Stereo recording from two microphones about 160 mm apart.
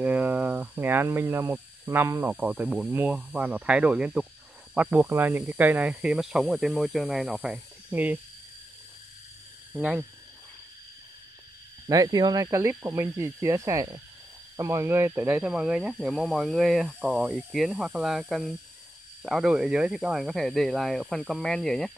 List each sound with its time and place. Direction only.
0.0 s a sound: 10° right (ahead or behind)
2.3 s speech: 10° right (ahead or behind)
9.7 s speech: 10° right (ahead or behind)
11.9 s speech: 25° right (ahead or behind); by 21.9 s centre (ahead or behind)